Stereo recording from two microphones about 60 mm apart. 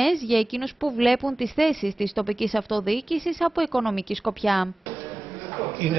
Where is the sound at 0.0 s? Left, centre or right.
Centre.